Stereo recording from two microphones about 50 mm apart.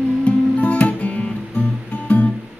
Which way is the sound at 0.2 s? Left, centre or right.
Left.